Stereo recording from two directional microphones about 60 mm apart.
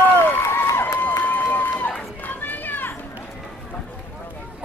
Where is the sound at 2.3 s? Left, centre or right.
Left.